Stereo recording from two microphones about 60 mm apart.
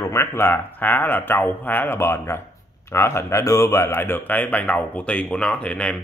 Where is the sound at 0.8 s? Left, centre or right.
Left.